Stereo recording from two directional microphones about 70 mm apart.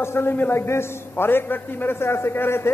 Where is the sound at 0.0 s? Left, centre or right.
Left.